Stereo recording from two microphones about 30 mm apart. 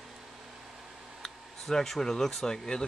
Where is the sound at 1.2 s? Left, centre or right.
Centre.